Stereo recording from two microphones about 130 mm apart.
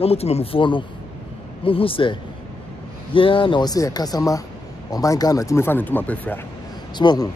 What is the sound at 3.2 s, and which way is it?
Speech, 40° left (ahead or behind).